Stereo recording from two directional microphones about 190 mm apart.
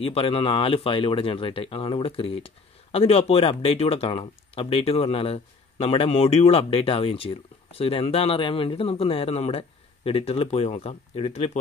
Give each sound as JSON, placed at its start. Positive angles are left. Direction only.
{"t": 0.0, "sound": "speech", "side_deg": 30}